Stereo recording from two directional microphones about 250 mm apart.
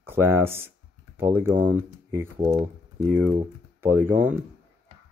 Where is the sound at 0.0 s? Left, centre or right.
Centre.